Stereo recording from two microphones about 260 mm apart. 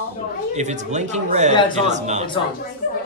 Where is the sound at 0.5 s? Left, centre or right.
Right.